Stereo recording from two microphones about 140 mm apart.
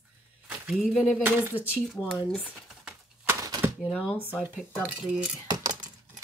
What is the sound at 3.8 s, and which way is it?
Speech, 5° left (ahead or behind).